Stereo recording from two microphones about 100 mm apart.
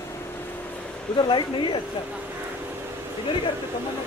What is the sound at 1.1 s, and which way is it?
Speech, 60° left (ahead or behind).